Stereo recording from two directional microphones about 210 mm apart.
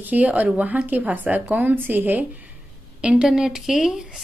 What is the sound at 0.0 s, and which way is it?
A woman's voice, 5° right (ahead or behind).